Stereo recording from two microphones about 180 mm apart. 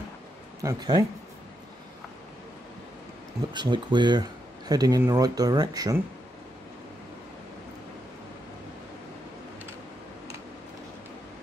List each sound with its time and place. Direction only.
0.6 s speech: 20° right (ahead or behind)
3.5 s speech: 25° right (ahead or behind)